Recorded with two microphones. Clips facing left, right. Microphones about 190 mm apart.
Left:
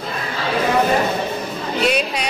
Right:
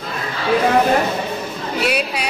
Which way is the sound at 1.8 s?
5° right (ahead or behind).